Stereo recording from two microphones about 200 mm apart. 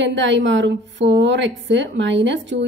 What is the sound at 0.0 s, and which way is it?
A woman's voice, 65° right (ahead or behind).